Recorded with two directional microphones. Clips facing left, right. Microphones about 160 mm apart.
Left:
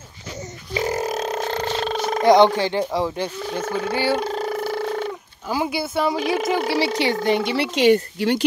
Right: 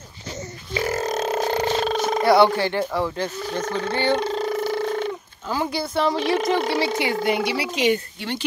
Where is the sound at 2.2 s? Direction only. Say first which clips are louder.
Left 3 dB; 20° left (ahead or behind).